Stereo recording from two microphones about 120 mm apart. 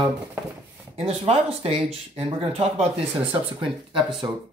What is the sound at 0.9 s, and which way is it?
Speech, 55° right (ahead or behind).